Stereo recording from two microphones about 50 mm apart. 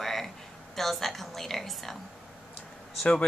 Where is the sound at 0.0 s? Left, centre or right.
Centre.